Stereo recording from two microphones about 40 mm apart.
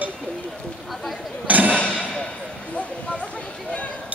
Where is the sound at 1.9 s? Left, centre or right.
Centre.